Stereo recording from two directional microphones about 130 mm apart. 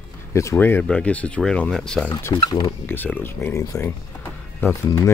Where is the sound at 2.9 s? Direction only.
15° left (ahead or behind).